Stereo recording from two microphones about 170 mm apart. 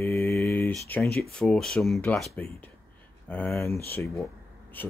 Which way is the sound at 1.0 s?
65° left (ahead or behind).